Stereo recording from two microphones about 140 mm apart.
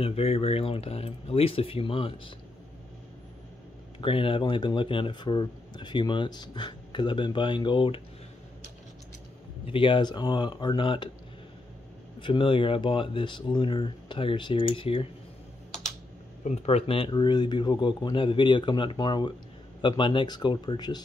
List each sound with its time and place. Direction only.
0.0 s speech: 45° left (ahead or behind)
4.0 s speech: 40° left (ahead or behind)
9.7 s speech: 35° left (ahead or behind)
12.2 s speech: 35° left (ahead or behind)
16.4 s speech: 45° left (ahead or behind); by 21.0 s 30° left (ahead or behind)